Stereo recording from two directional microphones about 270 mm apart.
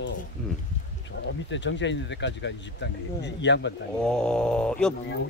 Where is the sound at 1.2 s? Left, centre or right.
Left.